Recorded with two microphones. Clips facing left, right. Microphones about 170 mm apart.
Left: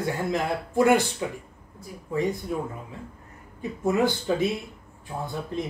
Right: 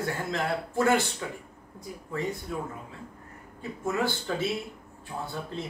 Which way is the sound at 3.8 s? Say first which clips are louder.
Left 6 dB; 15° left (ahead or behind).